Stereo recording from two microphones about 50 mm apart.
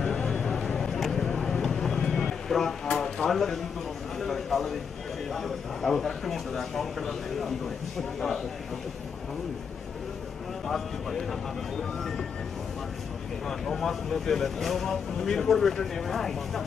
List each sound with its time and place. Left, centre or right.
0.3 s a sound: centre
4.2 s speech: centre
10.7 s speech: centre
13.5 s speech: centre